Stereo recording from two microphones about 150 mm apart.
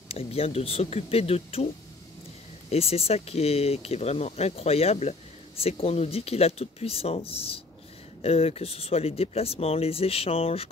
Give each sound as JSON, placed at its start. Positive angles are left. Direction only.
{"t": 0.1, "sound": "speech", "side_deg": 40}
{"t": 2.7, "sound": "speech", "side_deg": 40}